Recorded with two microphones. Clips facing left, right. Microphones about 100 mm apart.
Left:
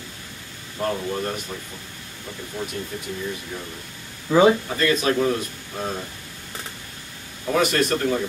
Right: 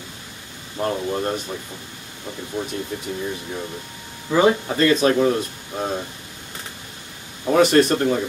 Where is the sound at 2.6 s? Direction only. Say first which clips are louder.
Right 3 dB; 20° right (ahead or behind).